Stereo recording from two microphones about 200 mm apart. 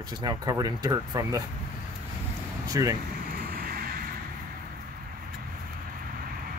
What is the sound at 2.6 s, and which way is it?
Speech, 15° right (ahead or behind).